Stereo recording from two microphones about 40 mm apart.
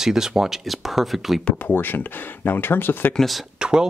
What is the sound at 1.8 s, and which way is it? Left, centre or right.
Speech, left.